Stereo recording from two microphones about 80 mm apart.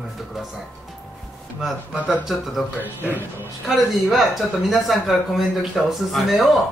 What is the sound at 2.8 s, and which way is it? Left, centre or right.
Speech, right.